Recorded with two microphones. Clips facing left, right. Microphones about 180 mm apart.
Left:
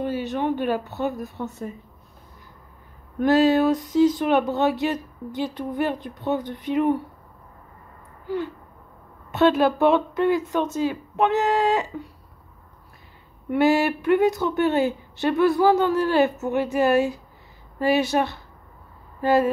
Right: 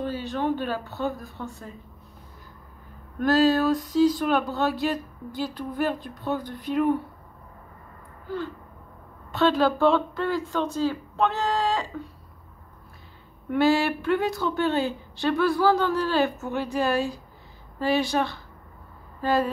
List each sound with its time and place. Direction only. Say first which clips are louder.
0.0 s speech: left 3 dB; 20° left (ahead or behind)
3.2 s speech: left 3 dB; 20° left (ahead or behind)
9.3 s speech: left 3 dB; 20° left (ahead or behind)
13.5 s speech: left 2 dB; 20° left (ahead or behind)